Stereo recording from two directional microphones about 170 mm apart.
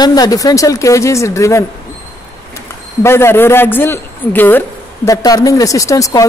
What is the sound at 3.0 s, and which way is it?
A man's voice, 15° left (ahead or behind).